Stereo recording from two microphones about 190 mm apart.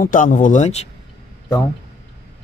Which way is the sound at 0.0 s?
45° left (ahead or behind).